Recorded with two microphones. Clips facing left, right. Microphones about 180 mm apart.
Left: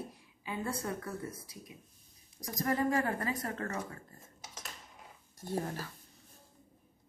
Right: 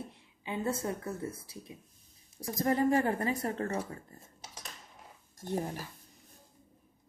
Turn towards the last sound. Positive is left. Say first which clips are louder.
# right 1 dB
turn(degrees=-15)  # may be behind; listen again after turning